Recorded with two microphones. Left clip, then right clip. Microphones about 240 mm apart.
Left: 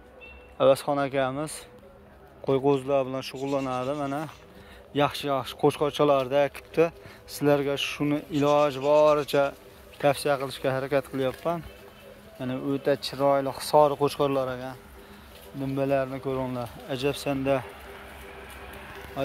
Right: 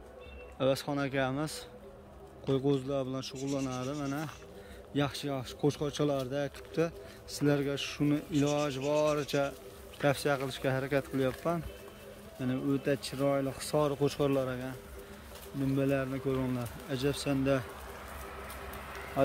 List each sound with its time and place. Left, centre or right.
0.6 s speech: centre